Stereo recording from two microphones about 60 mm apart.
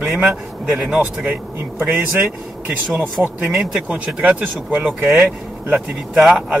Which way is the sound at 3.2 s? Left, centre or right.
Right.